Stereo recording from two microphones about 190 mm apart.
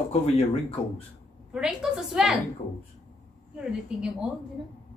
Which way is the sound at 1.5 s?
5° right (ahead or behind).